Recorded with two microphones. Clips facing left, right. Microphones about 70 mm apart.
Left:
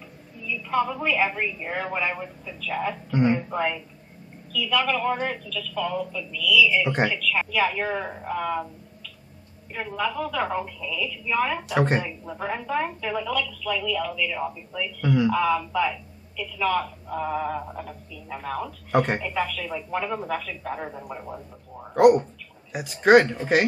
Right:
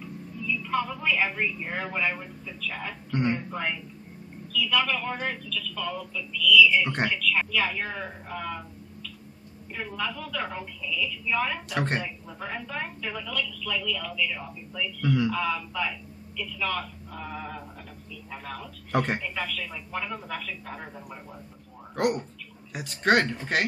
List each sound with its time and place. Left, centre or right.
0.6 s a woman's voice: centre
7.7 s a woman's voice: centre
9.8 s a woman's voice: centre
10.4 s speech: left
11.0 s a woman's voice: centre
12.3 s a woman's voice: centre
15.0 s a woman's voice: centre; by 17.8 s left
18.9 s a woman's voice: centre
22.7 s speech: centre